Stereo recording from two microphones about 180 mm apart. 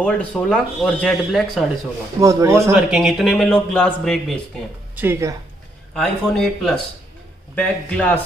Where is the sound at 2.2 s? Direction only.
15° right (ahead or behind).